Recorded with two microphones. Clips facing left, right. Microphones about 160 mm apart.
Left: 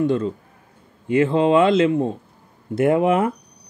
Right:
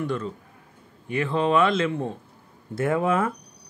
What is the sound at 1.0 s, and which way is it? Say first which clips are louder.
Speech: left 7 dB; 20° left (ahead or behind).